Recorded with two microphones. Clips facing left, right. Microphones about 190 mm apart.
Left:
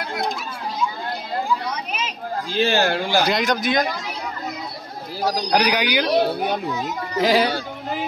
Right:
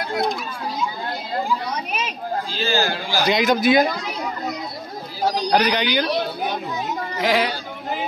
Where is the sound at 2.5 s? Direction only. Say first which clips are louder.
Left 5 dB; 60° left (ahead or behind).